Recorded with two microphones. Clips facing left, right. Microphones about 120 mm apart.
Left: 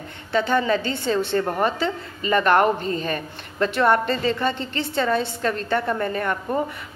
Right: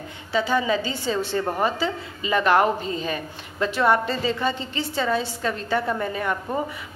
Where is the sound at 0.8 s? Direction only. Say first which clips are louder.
Left 2 dB; 55° left (ahead or behind).